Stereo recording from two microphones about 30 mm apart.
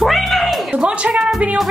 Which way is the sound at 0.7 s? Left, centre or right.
Right.